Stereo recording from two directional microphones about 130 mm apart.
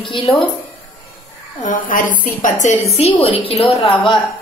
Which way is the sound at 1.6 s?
90° left.